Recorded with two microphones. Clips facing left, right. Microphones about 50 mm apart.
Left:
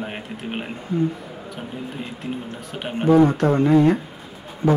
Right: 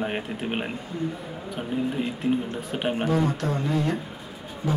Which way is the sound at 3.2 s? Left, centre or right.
Left.